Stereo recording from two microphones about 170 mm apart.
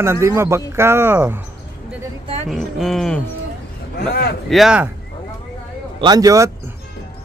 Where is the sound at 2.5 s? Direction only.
Centre (ahead or behind).